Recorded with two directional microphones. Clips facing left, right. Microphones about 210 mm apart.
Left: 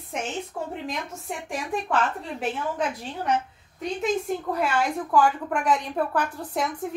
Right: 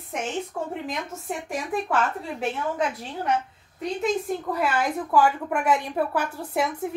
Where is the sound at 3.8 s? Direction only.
Centre (ahead or behind).